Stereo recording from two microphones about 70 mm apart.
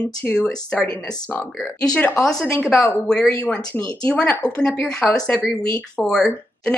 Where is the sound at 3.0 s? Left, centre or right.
Centre.